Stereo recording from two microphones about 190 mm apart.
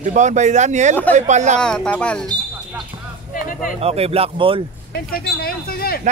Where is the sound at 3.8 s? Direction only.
30° right (ahead or behind).